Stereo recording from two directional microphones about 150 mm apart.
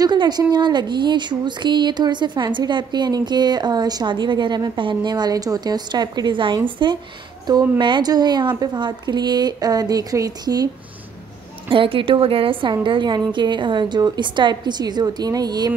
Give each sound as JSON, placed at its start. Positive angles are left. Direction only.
{"t": 0.0, "sound": "a woman's voice", "side_deg": -30}
{"t": 11.7, "sound": "a woman's voice", "side_deg": -35}